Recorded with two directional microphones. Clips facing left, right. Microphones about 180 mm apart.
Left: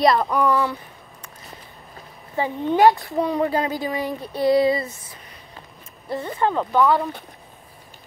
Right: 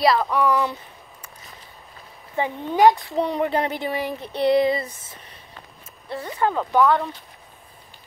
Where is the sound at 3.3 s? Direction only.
20° right (ahead or behind).